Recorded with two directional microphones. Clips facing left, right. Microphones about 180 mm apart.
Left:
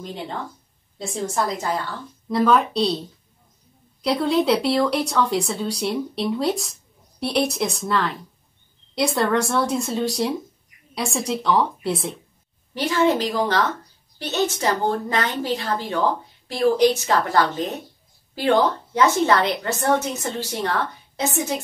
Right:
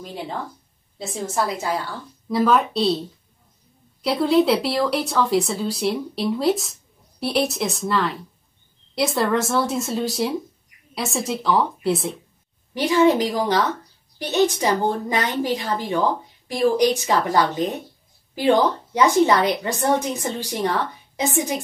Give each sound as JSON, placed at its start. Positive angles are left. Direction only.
{"t": 0.0, "sound": "speech", "side_deg": -5}
{"t": 12.7, "sound": "a woman's voice", "side_deg": -15}